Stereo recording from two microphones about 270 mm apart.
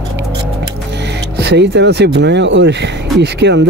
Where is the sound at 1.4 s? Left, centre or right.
Right.